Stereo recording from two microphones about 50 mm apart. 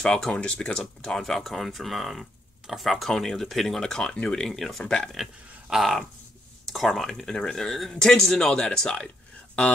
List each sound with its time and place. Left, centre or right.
0.0 s speech: centre
0.3 s speech: left
0.7 s speech: centre
4.8 s speech: centre
5.1 s a sound: centre
6.6 s speech: centre